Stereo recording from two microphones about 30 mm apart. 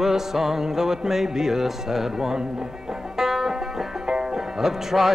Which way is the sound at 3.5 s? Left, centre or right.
Right.